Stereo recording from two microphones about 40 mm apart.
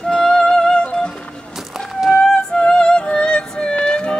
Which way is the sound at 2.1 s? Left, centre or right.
Left.